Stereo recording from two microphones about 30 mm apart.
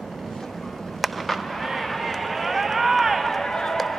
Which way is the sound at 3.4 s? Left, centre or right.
Centre.